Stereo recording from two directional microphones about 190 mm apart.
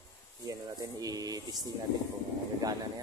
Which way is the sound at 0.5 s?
20° right (ahead or behind).